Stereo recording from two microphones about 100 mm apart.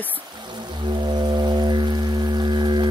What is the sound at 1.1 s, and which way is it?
Music, 50° right (ahead or behind).